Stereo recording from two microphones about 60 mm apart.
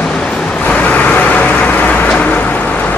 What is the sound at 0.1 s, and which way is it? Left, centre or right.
Vehicle, centre.